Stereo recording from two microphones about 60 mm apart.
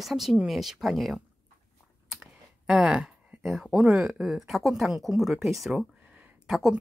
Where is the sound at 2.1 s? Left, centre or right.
Centre.